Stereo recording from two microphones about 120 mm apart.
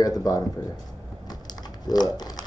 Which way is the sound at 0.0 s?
30° left (ahead or behind).